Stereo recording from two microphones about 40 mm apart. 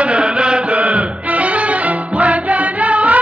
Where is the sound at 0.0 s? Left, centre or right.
Right.